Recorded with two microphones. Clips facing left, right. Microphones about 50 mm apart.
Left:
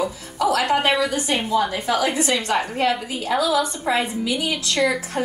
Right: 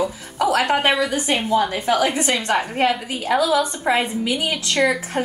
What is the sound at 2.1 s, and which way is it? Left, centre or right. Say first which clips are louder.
Speech: right 1 dB; right.